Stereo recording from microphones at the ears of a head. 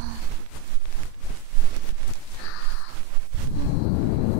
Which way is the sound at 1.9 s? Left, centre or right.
Left.